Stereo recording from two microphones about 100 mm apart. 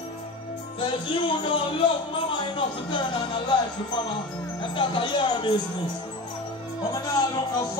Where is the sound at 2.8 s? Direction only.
50° left (ahead or behind).